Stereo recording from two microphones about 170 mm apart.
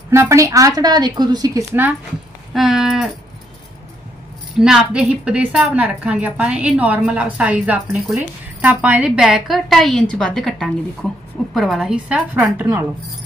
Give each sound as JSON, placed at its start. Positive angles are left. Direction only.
{"t": 0.1, "sound": "a woman's voice", "side_deg": -15}
{"t": 2.5, "sound": "a woman's voice", "side_deg": 0}
{"t": 4.6, "sound": "a woman's voice", "side_deg": -5}